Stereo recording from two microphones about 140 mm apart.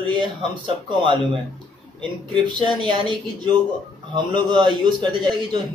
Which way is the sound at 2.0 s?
35° right (ahead or behind).